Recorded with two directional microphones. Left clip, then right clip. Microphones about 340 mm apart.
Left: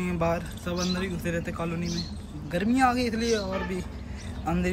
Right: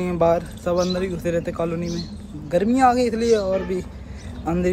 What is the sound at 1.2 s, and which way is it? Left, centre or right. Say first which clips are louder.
Speech: right 8 dB; right.